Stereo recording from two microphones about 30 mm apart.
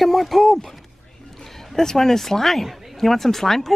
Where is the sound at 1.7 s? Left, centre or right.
Centre.